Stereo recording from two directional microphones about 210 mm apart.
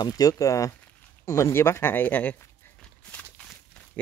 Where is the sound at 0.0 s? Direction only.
15° left (ahead or behind).